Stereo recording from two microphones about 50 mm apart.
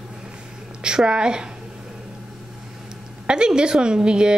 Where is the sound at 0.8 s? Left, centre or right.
Centre.